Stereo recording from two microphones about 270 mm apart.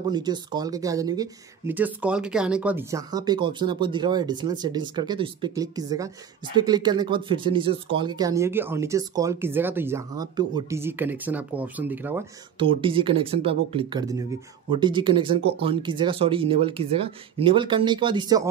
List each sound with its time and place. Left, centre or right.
0.1 s speech: centre
12.5 s speech: centre